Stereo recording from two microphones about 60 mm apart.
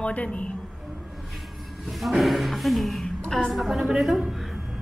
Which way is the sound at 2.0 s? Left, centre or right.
Centre.